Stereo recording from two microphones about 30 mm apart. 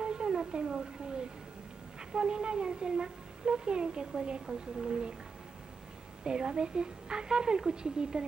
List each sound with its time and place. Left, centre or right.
0.0 s a woman's voice: right
6.2 s a woman's voice: right